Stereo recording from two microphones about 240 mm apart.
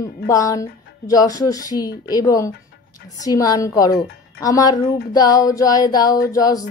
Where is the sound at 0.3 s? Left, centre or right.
Centre.